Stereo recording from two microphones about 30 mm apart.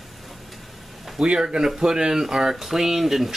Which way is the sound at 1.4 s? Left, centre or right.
Right.